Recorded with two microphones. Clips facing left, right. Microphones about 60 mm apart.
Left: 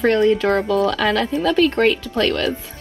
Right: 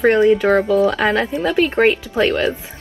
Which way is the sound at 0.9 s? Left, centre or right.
Right.